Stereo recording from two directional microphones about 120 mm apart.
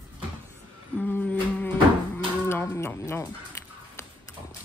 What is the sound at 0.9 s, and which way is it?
Humming, 15° left (ahead or behind).